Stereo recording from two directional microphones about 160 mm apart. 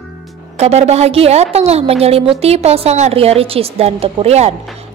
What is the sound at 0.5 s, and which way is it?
A woman's voice, 40° right (ahead or behind).